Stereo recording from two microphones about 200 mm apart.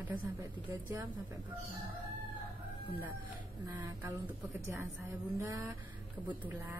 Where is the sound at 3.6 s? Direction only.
15° right (ahead or behind).